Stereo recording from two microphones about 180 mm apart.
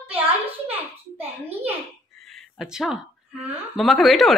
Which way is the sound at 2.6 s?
Centre (ahead or behind).